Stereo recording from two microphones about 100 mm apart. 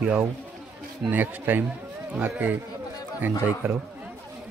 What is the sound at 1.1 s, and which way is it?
Speech, 20° right (ahead or behind).